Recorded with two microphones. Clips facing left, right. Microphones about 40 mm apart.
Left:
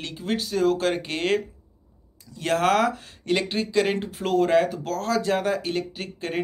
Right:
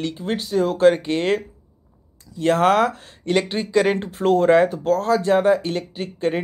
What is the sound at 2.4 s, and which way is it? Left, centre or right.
Speech, right.